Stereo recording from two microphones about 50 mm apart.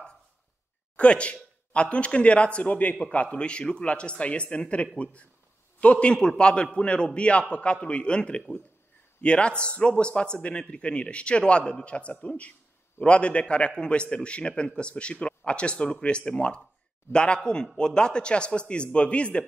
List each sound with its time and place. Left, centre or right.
0.9 s a man's voice: left